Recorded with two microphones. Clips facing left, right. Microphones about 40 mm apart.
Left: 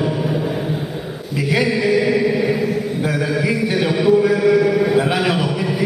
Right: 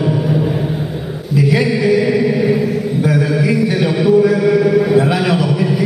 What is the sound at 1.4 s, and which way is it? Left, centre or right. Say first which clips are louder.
Chant: right 2 dB; centre.